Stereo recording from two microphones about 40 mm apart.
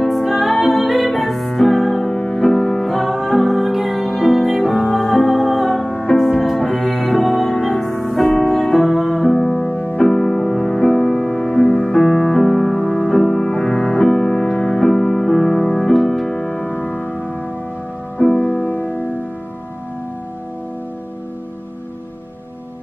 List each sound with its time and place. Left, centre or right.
0.0 s music: centre
8.4 s music: centre
8.7 s music: centre
12.0 s music: centre
16.6 s music: left
18.2 s music: centre
18.5 s music: left